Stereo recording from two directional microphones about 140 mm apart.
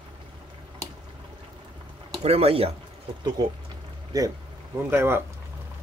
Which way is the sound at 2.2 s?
45° right (ahead or behind).